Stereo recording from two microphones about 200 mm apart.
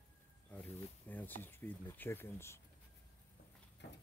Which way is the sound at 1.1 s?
10° left (ahead or behind).